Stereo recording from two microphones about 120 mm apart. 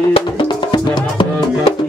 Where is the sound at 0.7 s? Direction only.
40° left (ahead or behind).